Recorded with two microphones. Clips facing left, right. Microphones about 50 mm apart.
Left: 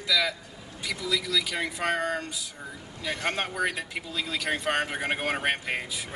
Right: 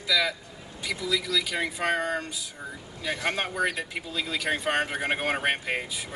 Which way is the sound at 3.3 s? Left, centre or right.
Centre.